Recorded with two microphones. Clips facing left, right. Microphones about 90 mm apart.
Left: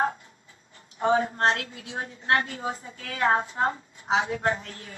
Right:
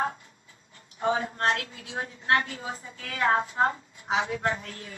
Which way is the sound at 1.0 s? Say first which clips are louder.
Left 3 dB; 35° left (ahead or behind).